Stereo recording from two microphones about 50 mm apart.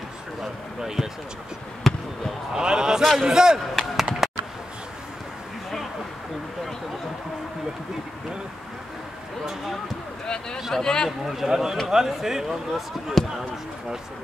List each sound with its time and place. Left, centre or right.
0.4 s speech: centre
1.8 s basketball bounce: centre
2.5 s speech: centre
3.0 s speech: centre
3.5 s chop: centre
10.2 s a sound: centre
10.7 s a man's voice: centre
11.1 s a man's voice: centre